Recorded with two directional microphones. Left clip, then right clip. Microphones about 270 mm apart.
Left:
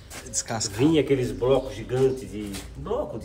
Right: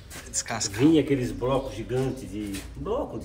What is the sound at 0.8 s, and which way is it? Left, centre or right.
Speech, centre.